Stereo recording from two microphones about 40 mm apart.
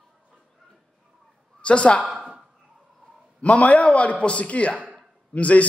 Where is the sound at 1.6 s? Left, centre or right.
Left.